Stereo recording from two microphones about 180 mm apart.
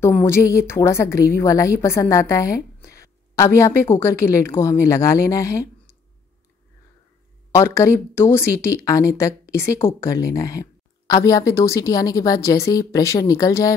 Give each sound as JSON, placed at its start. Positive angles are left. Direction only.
{"t": 0.0, "sound": "speech", "side_deg": 15}
{"t": 7.5, "sound": "speech", "side_deg": 15}